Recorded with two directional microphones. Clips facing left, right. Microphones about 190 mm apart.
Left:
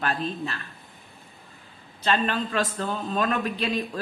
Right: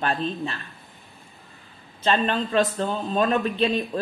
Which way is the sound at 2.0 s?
25° right (ahead or behind).